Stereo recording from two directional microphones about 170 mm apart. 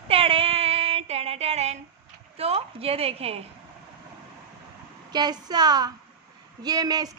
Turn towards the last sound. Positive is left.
turn(degrees=-20)  # may be behind; listen again after turning